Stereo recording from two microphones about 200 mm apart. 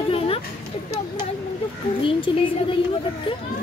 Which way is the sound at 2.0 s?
25° left (ahead or behind).